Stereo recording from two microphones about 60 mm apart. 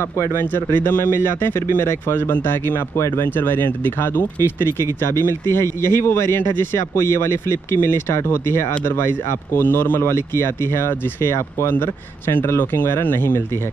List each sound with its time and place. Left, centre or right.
0.0 s speech: left
0.5 s speech: left
3.0 s speech: left
3.3 s speech: left